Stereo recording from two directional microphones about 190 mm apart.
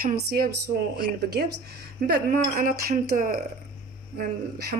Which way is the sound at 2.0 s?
50° right (ahead or behind).